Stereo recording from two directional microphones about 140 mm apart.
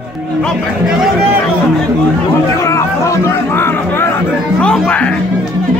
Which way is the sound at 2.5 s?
20° left (ahead or behind).